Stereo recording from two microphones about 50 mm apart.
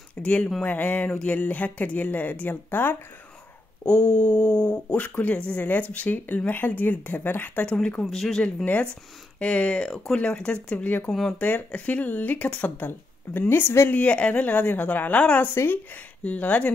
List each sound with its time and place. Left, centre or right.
0.1 s speech: left
3.8 s speech: left
7.6 s speech: left
8.0 s speech: centre
9.4 s speech: left
11.4 s speech: left
13.8 s speech: left
15.5 s speech: left
15.9 s speech: left